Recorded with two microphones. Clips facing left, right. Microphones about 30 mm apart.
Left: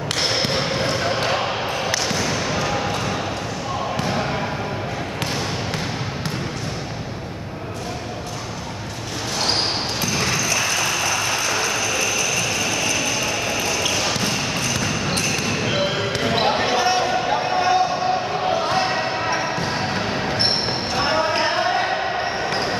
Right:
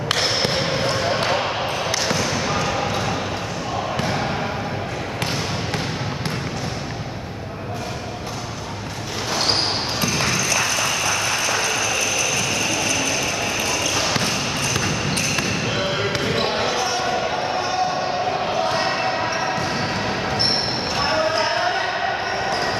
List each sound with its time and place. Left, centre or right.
0.9 s basketball bounce: centre
10.2 s a sound: centre
13.6 s basketball bounce: centre
15.6 s basketball bounce: centre
16.6 s basketball bounce: left
18.7 s basketball bounce: centre